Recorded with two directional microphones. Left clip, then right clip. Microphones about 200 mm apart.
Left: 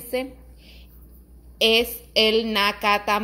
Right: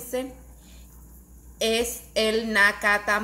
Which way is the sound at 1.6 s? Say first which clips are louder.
Left 6 dB; 25° left (ahead or behind).